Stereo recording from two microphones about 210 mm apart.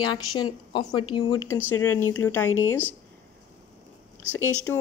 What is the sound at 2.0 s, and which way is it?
Speech, 90° left.